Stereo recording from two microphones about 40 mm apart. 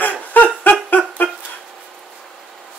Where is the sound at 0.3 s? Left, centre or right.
Left.